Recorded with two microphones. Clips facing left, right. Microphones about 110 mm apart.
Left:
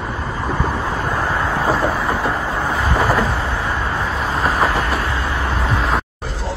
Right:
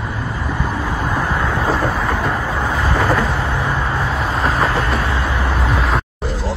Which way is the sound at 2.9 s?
10° left (ahead or behind).